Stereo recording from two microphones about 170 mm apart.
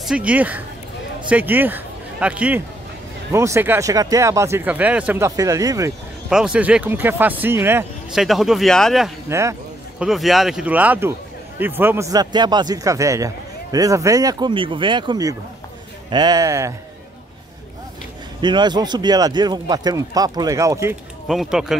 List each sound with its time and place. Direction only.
0.1 s speech: 10° right (ahead or behind)
6.3 s speech: 5° right (ahead or behind)
8.1 s a man's voice: centre (ahead or behind)
9.3 s speech: 15° right (ahead or behind)
9.9 s a man's voice: centre (ahead or behind); by 16.7 s 20° right (ahead or behind)
18.4 s speech: 25° right (ahead or behind)
21.3 s a man's voice: centre (ahead or behind)